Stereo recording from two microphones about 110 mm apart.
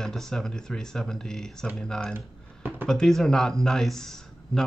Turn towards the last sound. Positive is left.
turn(degrees=5)  # may be behind; listen again after turning